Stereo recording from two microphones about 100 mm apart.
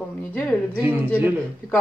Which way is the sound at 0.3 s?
10° left (ahead or behind).